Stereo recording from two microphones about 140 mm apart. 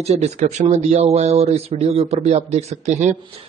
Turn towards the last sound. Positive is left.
turn(degrees=-55)  # may be behind; listen again after turning